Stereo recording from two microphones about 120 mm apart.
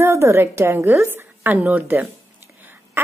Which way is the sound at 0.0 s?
20° right (ahead or behind).